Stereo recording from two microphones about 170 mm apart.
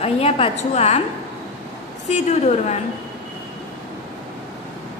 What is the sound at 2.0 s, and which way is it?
Speech, 40° left (ahead or behind).